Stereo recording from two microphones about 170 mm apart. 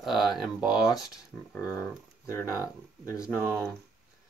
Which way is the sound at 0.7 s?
20° left (ahead or behind).